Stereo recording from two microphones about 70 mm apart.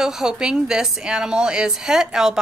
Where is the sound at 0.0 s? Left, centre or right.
Centre.